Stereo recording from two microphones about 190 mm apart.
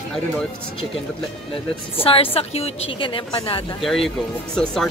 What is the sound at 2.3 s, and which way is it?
A woman's voice, 35° left (ahead or behind).